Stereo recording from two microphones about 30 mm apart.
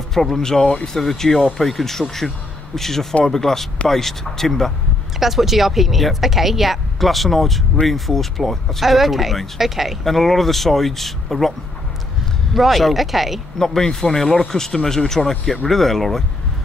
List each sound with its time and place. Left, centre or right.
0.1 s speech: centre
0.4 s a man's voice: centre
5.2 s speech: centre
8.8 s speech: centre
10.0 s speech: centre
12.5 s speech: centre
13.6 s a man's voice: centre